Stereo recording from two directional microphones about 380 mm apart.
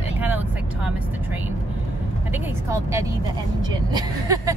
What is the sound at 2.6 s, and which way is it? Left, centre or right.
Speech, centre.